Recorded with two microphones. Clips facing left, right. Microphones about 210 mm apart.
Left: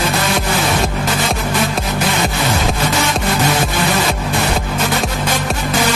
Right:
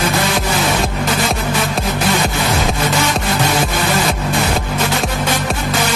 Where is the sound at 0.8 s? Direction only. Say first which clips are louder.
Even; centre (ahead or behind).